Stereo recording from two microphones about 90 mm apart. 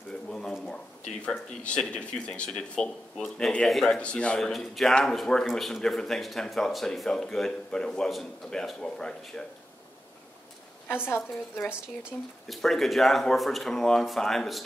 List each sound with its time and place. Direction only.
0.1 s a sound: 5° left (ahead or behind)
1.2 s speech: 15° left (ahead or behind)
11.1 s a woman's voice: 25° left (ahead or behind)
12.4 s speech: centre (ahead or behind)